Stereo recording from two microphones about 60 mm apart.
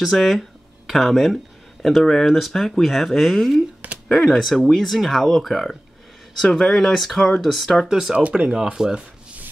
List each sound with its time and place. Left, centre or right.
0.0 s speech: centre
3.8 s a sound: centre
4.2 s speech: centre
8.2 s speech: centre